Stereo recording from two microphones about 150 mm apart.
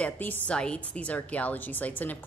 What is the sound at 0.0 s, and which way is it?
A woman's voice, 10° left (ahead or behind).